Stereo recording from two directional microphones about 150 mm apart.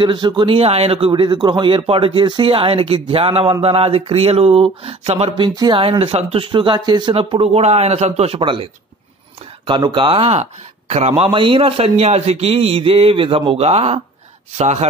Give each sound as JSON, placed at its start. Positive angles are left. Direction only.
{"t": 0.0, "sound": "a man's voice", "side_deg": -30}
{"t": 5.4, "sound": "a man's voice", "side_deg": -30}
{"t": 9.7, "sound": "a man's voice", "side_deg": -30}
{"t": 11.3, "sound": "a man's voice", "side_deg": -35}